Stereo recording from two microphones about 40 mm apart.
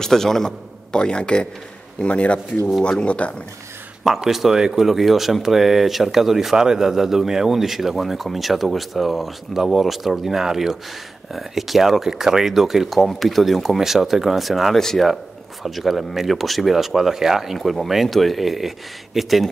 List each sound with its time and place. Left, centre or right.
0.0 s a man's voice: centre
0.9 s a man's voice: left
4.0 s speech: centre
4.8 s speech: centre
14.8 s a man's voice: centre
15.6 s speech: centre
17.6 s speech: centre